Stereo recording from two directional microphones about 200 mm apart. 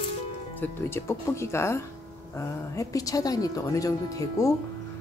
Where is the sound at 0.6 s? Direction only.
10° left (ahead or behind).